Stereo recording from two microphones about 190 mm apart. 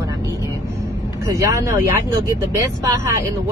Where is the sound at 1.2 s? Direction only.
15° right (ahead or behind).